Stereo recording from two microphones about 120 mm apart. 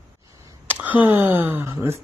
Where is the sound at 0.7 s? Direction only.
15° right (ahead or behind).